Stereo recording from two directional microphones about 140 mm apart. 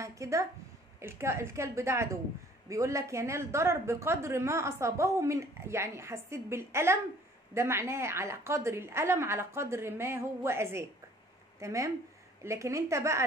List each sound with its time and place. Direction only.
0.0 s a woman's voice: 20° right (ahead or behind)